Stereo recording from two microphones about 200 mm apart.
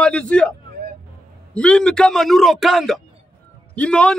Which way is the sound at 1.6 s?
5° left (ahead or behind).